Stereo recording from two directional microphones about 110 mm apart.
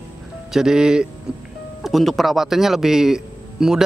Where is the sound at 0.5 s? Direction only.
5° right (ahead or behind).